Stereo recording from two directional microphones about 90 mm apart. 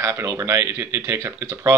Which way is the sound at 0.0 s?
35° right (ahead or behind).